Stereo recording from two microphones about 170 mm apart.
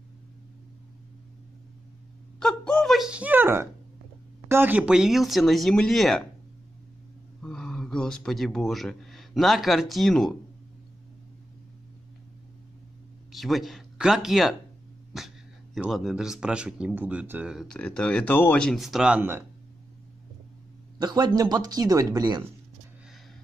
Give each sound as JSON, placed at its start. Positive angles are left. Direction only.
{"t": 2.4, "sound": "a man's voice", "side_deg": 5}
{"t": 7.4, "sound": "speech", "side_deg": 5}
{"t": 13.3, "sound": "a man's voice", "side_deg": 0}
{"t": 21.0, "sound": "speech", "side_deg": -25}